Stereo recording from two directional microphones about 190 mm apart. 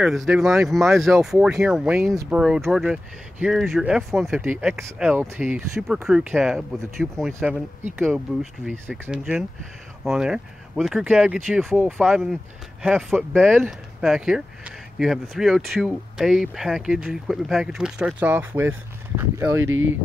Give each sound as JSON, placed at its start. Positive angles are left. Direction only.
{"t": 0.0, "sound": "speech", "side_deg": 0}
{"t": 19.6, "sound": "speech", "side_deg": -90}